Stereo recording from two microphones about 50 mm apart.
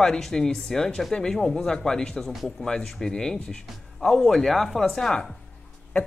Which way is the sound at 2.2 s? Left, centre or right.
Centre.